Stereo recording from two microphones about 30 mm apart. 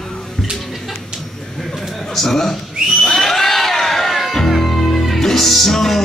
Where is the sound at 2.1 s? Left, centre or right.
Centre.